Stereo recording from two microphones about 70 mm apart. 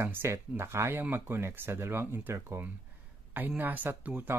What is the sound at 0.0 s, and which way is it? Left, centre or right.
Speech, right.